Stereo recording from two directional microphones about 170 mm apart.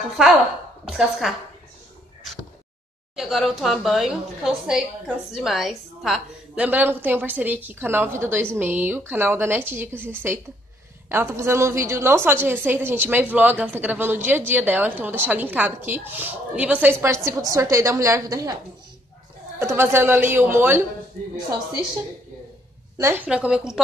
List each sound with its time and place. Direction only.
0.1 s a woman's voice: 5° right (ahead or behind)
3.2 s a woman's voice: centre (ahead or behind); by 18.6 s 20° right (ahead or behind)
19.6 s a woman's voice: 15° right (ahead or behind)
22.9 s a woman's voice: 15° right (ahead or behind)